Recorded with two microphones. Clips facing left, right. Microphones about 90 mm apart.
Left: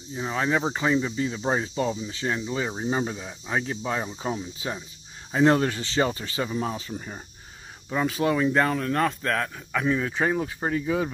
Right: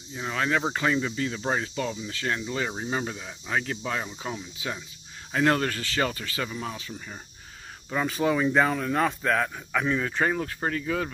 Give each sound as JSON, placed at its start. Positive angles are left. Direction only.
{"t": 0.1, "sound": "speech", "side_deg": 20}
{"t": 5.3, "sound": "speech", "side_deg": 15}
{"t": 7.9, "sound": "speech", "side_deg": 0}